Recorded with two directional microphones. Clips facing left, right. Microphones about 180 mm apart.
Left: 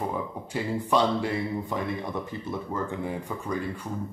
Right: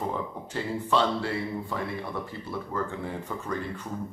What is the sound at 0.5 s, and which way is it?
Speech, 15° left (ahead or behind).